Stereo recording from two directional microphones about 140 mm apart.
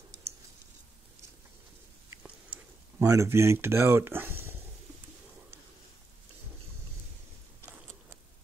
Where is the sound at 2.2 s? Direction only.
10° right (ahead or behind).